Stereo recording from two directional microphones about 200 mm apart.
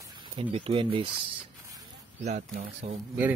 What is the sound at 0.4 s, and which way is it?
Speech, 25° right (ahead or behind).